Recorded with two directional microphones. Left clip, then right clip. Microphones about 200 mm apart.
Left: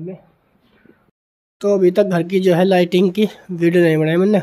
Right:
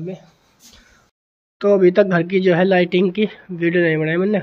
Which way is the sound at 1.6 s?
10° left (ahead or behind).